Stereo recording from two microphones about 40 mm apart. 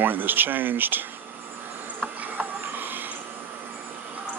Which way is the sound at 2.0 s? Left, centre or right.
Right.